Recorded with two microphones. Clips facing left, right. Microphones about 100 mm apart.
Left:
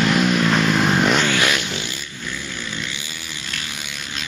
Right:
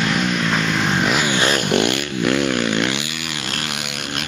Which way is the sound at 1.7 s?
65° right (ahead or behind).